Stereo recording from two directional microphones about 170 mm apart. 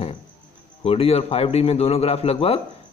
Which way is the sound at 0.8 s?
35° left (ahead or behind).